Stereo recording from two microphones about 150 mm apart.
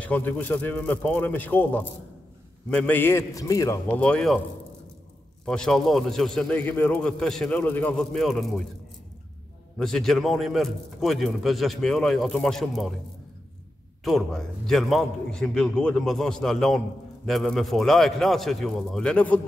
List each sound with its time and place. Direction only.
0.0 s a man's voice: 10° left (ahead or behind)
4.0 s a man's voice: 5° left (ahead or behind)
5.4 s a man's voice: 5° left (ahead or behind)
9.8 s a man's voice: 5° left (ahead or behind)
14.0 s a man's voice: centre (ahead or behind)